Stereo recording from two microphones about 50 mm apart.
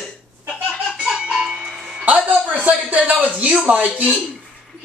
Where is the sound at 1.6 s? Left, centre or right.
Centre.